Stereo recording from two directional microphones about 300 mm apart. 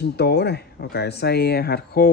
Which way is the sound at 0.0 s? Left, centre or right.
Left.